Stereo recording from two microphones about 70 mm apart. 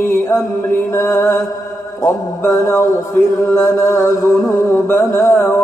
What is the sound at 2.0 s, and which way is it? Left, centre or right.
Music, left.